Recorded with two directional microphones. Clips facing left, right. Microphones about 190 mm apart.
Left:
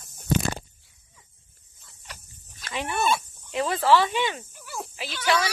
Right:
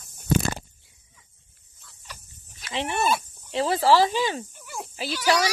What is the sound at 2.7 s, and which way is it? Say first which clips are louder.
Speech: right 1 dB; 25° right (ahead or behind).